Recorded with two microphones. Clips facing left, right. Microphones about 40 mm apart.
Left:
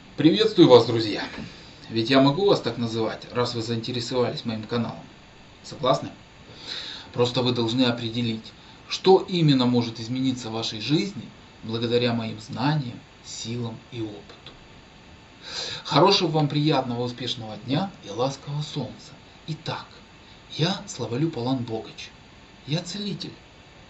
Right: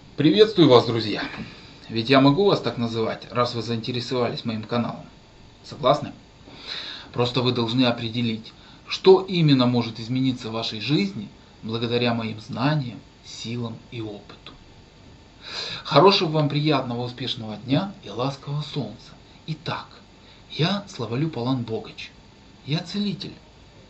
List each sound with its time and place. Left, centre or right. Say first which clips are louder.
0.1 s a man's voice: right 3 dB; centre